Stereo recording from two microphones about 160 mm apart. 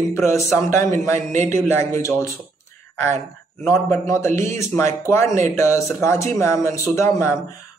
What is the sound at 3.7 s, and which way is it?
A man's voice, 15° left (ahead or behind).